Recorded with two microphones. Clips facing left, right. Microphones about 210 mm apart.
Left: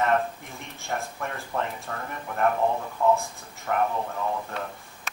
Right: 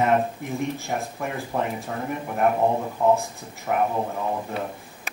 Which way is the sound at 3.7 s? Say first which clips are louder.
Right 2 dB; 10° right (ahead or behind).